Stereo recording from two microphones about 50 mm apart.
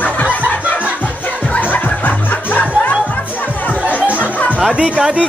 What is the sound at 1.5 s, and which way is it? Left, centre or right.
Music, left.